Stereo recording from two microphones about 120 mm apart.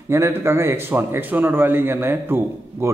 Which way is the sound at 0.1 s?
25° right (ahead or behind).